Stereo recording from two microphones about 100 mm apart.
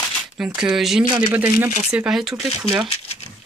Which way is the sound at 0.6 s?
5° right (ahead or behind).